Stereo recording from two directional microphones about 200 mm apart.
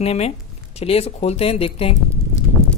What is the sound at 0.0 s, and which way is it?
Speech, 30° left (ahead or behind).